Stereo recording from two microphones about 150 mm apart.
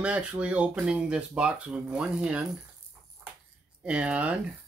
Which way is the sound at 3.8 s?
5° right (ahead or behind).